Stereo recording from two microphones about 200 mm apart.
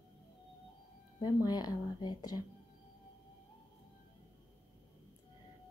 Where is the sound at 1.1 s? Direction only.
20° left (ahead or behind).